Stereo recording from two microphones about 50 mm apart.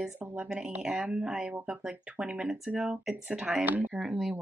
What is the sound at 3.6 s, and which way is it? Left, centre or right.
Speech, right.